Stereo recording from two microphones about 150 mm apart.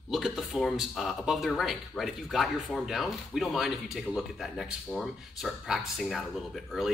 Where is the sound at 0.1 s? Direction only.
Centre (ahead or behind).